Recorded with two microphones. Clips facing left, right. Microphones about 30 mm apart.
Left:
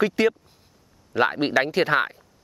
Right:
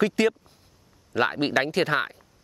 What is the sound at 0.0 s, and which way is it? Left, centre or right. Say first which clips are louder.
Speech: left 1 dB; centre.